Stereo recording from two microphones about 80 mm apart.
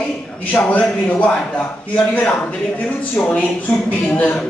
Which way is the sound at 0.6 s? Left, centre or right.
Centre.